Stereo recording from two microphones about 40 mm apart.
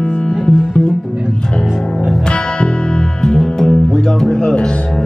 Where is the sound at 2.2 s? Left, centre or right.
Left.